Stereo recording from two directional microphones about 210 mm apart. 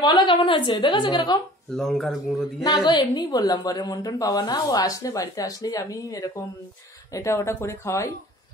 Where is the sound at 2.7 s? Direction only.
20° left (ahead or behind).